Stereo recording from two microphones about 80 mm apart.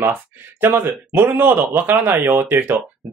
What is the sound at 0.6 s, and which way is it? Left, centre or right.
Speech, right.